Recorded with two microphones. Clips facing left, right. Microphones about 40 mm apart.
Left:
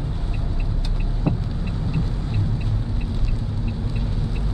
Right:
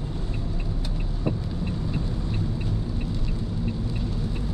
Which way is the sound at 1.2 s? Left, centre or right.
Centre.